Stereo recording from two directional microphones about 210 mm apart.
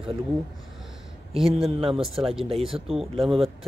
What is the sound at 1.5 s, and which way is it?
Speech, 25° right (ahead or behind).